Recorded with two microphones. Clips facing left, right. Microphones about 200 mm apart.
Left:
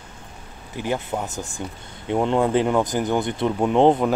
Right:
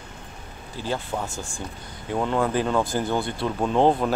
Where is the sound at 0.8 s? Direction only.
15° left (ahead or behind).